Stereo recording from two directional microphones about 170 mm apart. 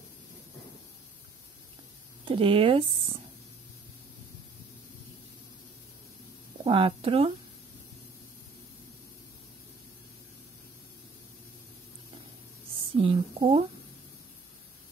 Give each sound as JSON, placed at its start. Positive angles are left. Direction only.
{"t": 2.2, "sound": "speech", "side_deg": -30}
{"t": 6.6, "sound": "speech", "side_deg": -35}
{"t": 12.9, "sound": "speech", "side_deg": -35}